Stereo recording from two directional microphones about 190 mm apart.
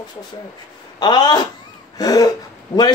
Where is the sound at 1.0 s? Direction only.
20° left (ahead or behind).